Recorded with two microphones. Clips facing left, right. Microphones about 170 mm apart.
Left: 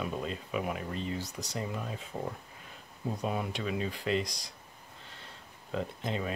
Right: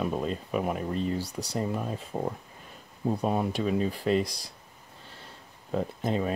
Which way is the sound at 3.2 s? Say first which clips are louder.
Right 5 dB; 40° right (ahead or behind).